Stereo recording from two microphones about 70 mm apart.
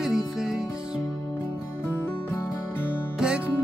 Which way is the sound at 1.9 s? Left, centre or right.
Left.